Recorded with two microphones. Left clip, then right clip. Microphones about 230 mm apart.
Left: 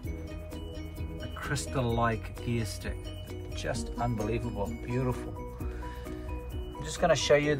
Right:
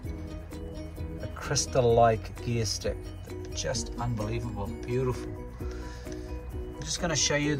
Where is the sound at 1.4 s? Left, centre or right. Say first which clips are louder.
Right 7 dB; centre.